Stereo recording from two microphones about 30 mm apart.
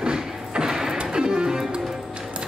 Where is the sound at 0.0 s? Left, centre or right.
Right.